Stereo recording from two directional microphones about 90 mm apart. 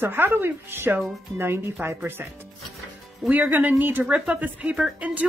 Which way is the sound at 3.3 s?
20° right (ahead or behind).